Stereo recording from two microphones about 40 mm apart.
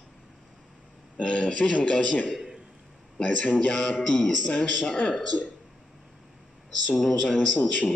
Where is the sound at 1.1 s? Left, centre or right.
Left.